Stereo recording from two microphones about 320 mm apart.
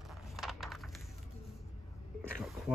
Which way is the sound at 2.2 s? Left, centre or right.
Centre.